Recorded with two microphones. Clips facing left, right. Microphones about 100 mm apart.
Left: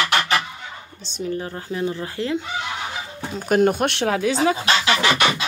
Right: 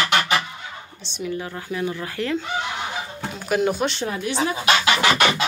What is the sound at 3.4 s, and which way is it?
Speech, 45° left (ahead or behind).